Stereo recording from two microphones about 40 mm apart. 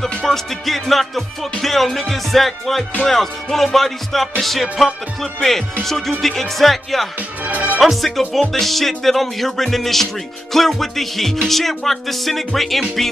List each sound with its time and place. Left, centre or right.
0.2 s music: centre
7.2 s music: right
7.8 s music: centre